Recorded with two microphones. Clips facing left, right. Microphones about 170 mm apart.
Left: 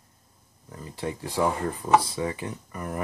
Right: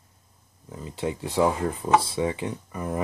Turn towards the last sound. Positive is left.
turn(degrees=-15)  # may be behind; listen again after turning